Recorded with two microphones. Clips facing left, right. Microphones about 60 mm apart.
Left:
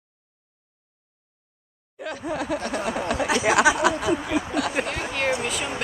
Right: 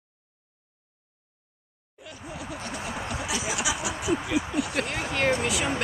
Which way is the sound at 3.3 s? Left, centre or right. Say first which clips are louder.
Left 11 dB; left.